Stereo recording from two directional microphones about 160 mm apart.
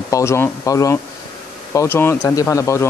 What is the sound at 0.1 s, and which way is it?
Speech, 15° left (ahead or behind).